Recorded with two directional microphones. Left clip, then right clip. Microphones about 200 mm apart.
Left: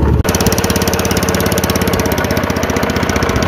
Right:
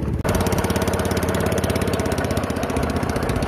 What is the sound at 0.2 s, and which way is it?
Engine, 45° left (ahead or behind).